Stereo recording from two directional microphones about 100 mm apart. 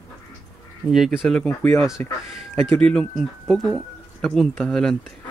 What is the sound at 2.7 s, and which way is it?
Speech, 10° left (ahead or behind).